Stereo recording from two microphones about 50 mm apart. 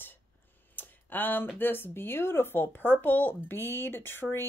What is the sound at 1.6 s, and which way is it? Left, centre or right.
Speech, left.